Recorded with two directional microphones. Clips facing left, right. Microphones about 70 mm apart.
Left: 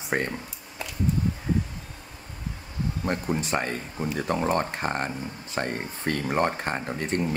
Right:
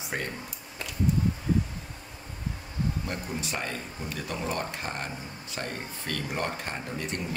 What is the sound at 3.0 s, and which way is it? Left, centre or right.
Speech, left.